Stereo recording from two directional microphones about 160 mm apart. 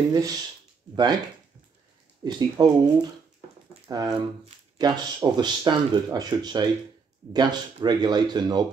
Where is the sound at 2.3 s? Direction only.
25° right (ahead or behind).